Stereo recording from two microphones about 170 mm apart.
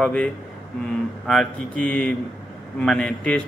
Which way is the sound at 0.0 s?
5° left (ahead or behind).